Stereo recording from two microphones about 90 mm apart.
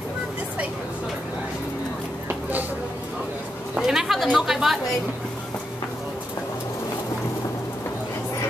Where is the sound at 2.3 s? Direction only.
20° right (ahead or behind).